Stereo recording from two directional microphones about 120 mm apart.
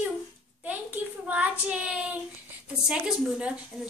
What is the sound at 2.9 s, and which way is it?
Speech, 10° right (ahead or behind).